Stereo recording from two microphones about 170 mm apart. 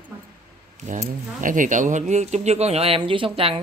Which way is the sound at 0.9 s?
50° right (ahead or behind).